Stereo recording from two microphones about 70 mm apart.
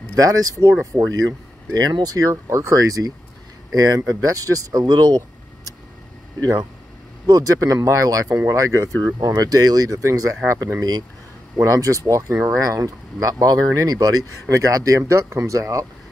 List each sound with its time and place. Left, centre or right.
0.1 s speech: right
0.9 s speech: centre
1.7 s speech: right
2.5 s speech: right
3.7 s speech: right
7.2 s speech: right
10.8 s speech: right
11.5 s speech: right
14.5 s speech: right